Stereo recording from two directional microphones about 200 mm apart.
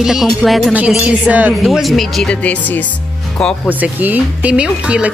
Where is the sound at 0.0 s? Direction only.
Centre (ahead or behind).